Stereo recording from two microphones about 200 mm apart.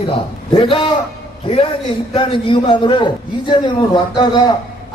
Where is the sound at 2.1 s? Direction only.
25° left (ahead or behind).